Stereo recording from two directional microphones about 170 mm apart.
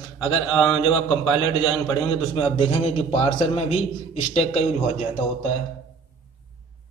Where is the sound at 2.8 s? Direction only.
35° left (ahead or behind).